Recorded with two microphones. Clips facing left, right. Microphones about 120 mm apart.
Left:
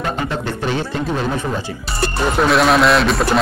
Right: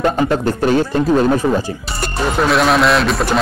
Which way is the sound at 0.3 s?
45° right (ahead or behind).